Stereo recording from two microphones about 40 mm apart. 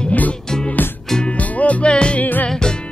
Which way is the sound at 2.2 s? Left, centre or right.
Left.